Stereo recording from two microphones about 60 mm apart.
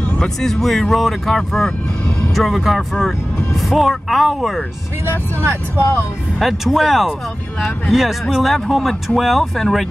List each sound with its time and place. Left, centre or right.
0.2 s speech: centre
5.0 s speech: right
6.4 s speech: centre